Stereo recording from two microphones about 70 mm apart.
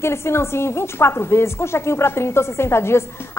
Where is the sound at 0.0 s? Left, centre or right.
Left.